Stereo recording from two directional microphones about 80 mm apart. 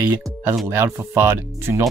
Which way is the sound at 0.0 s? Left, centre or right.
Right.